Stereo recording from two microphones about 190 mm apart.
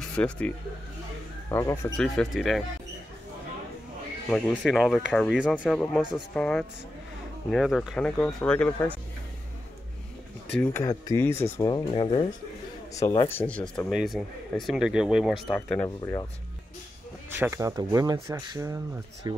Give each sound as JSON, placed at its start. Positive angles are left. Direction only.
{"t": 0.1, "sound": "speech", "side_deg": 5}
{"t": 1.5, "sound": "speech", "side_deg": 15}
{"t": 2.0, "sound": "speech", "side_deg": 0}
{"t": 4.3, "sound": "speech", "side_deg": 0}
{"t": 10.5, "sound": "speech", "side_deg": 10}
{"t": 13.3, "sound": "speech", "side_deg": 10}
{"t": 16.0, "sound": "speech", "side_deg": 15}
{"t": 17.4, "sound": "speech", "side_deg": -15}